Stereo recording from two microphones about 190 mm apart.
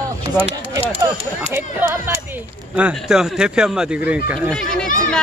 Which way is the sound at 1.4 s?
10° right (ahead or behind).